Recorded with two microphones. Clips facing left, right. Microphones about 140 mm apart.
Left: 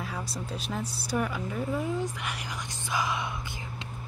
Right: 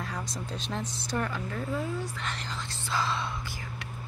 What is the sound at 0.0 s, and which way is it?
Speech, 5° left (ahead or behind).